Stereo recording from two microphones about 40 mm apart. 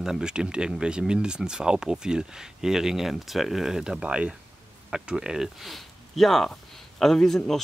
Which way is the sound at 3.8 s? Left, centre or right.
Centre.